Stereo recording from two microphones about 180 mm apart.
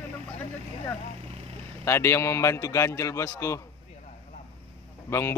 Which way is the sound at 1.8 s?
15° left (ahead or behind).